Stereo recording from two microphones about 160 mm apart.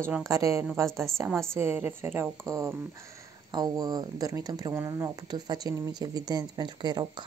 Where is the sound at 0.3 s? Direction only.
20° right (ahead or behind).